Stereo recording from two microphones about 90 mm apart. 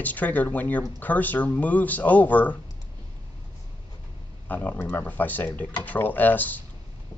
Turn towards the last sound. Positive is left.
turn(degrees=20)  # may be behind; listen again after turning